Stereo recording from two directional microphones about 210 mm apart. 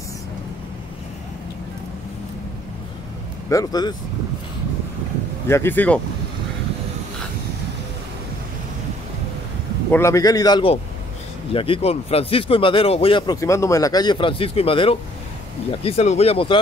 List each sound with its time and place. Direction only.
3.4 s a man's voice: 15° left (ahead or behind)
5.5 s a man's voice: 10° left (ahead or behind)
9.8 s a man's voice: 10° left (ahead or behind)